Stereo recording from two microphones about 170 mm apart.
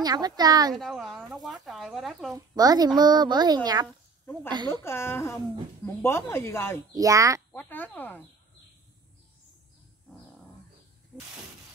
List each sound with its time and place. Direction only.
0.0 s a child's voice: 25° right (ahead or behind)
0.7 s speech: centre (ahead or behind)
2.3 s a child's voice: 20° right (ahead or behind)
3.8 s a sound: 10° left (ahead or behind)
4.5 s a child's voice: 25° right (ahead or behind)
4.8 s speech: 15° left (ahead or behind)
6.9 s a child's voice: 20° right (ahead or behind)
7.5 s speech: 10° left (ahead or behind)
11.1 s speech: 5° right (ahead or behind)